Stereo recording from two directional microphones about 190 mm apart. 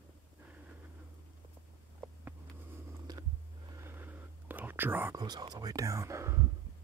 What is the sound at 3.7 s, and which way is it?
Whispering, 10° right (ahead or behind).